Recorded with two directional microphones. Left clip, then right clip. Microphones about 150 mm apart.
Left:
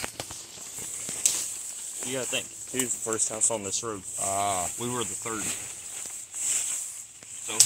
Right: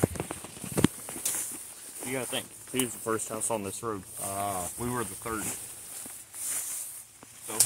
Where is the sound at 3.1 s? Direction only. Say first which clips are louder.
Left 2 dB; 75° right (ahead or behind).